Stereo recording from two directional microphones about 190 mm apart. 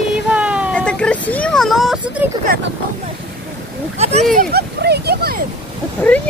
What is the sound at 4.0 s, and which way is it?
Speech, 35° right (ahead or behind).